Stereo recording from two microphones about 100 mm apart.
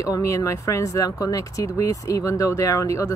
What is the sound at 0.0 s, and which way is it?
Speech, 30° left (ahead or behind).